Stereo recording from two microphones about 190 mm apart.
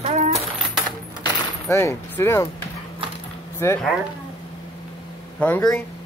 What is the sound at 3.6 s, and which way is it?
Speech, 15° left (ahead or behind).